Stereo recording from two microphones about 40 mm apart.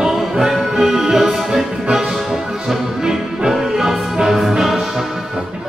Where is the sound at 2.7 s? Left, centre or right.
Centre.